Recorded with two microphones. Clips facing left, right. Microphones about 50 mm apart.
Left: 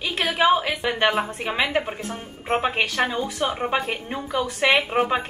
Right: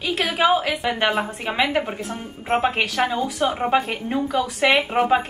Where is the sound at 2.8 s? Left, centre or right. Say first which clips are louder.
Right 1 dB; centre.